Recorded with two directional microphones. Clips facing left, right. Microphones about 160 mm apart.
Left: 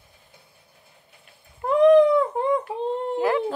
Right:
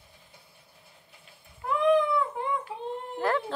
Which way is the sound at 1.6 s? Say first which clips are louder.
Left 9 dB; 40° left (ahead or behind).